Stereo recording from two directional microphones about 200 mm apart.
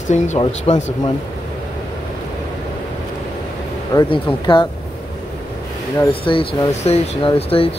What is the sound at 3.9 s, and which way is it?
Speech, 20° left (ahead or behind).